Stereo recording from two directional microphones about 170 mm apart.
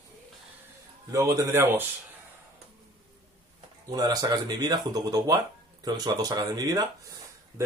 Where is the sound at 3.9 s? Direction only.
25° right (ahead or behind).